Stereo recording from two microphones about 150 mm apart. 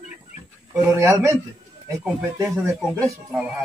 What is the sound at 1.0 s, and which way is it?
Speech, 20° right (ahead or behind).